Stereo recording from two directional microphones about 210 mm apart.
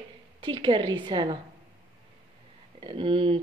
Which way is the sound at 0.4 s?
25° right (ahead or behind).